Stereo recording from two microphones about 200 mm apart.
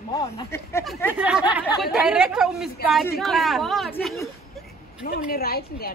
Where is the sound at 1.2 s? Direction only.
5° right (ahead or behind).